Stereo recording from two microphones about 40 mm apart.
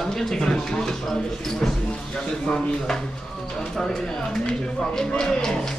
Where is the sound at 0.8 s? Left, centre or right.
Centre.